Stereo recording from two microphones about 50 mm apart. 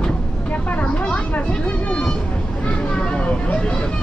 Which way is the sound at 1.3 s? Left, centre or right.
Left.